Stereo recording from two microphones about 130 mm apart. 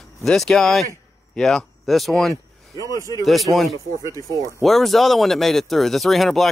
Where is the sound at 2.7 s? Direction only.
25° right (ahead or behind).